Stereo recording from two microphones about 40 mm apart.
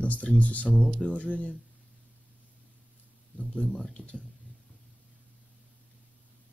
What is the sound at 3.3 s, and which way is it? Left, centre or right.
Speech, left.